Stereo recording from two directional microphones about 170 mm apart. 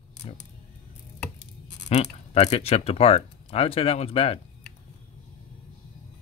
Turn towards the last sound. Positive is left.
turn(degrees=35)  # may be behind; listen again after turning